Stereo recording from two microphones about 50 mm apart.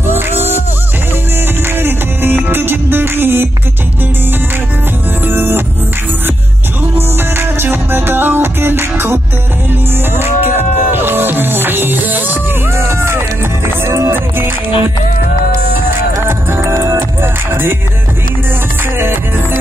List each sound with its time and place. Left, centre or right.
0.0 s music: right
1.6 s music: right
5.2 s music: right
7.0 s music: right
12.7 s music: right
16.3 s music: right
16.7 s music: right
17.2 s music: right
18.9 s music: right